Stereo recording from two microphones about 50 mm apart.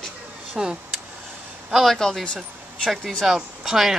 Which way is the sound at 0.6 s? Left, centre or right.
Centre.